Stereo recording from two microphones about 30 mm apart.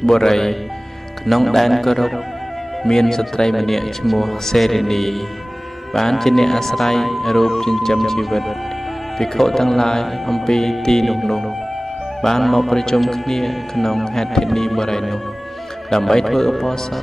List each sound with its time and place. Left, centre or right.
0.0 s speech: centre
1.2 s a man's voice: centre
2.9 s a man's voice: centre
12.2 s speech: centre